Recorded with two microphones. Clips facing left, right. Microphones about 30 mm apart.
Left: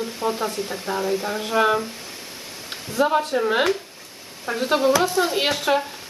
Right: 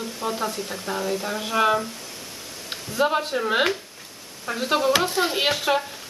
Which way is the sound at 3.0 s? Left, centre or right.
Centre.